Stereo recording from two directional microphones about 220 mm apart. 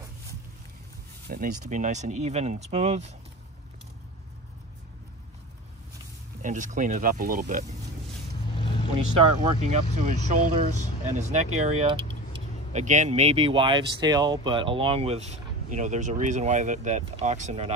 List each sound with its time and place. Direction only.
1.3 s speech: 35° right (ahead or behind)
6.4 s speech: 35° right (ahead or behind)
8.5 s vehicle: 20° left (ahead or behind)
9.4 s speech: 30° right (ahead or behind)